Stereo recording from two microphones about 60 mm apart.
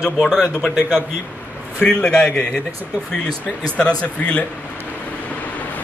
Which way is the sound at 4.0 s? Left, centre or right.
Left.